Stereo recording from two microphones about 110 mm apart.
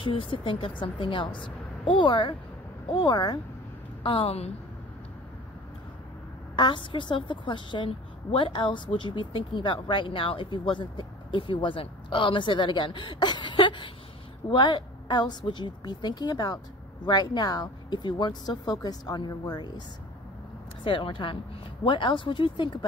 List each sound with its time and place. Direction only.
0.0 s a woman's voice: 50° left (ahead or behind)
2.9 s speech: 35° left (ahead or behind)
4.0 s a woman's voice: 60° left (ahead or behind)
6.5 s a woman's voice: 45° left (ahead or behind)
20.8 s a woman's voice: 50° left (ahead or behind)